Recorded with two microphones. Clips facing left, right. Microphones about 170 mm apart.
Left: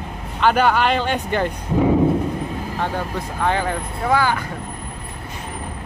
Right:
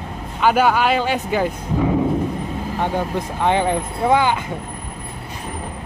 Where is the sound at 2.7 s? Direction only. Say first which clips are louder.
Right 5 dB; 15° right (ahead or behind).